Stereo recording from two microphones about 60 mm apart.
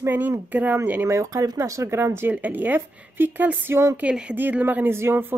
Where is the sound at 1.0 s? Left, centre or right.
Right.